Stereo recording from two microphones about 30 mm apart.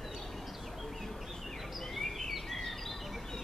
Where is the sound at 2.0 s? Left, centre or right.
Centre.